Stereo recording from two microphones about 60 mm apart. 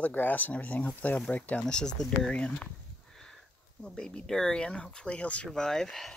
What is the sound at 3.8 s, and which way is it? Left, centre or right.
Speech, centre.